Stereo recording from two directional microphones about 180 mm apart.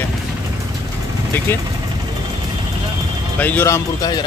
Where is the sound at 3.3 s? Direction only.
10° left (ahead or behind).